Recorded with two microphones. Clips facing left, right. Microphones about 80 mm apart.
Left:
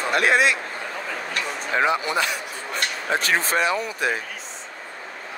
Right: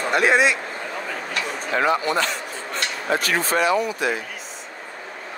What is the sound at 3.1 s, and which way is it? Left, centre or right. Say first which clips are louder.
Speech: right 1 dB; left.